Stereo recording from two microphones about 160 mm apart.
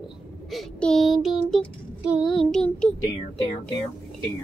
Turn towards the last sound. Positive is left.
turn(degrees=20)  # may be behind; listen again after turning